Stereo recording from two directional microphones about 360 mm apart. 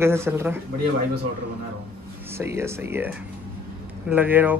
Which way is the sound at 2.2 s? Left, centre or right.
Centre.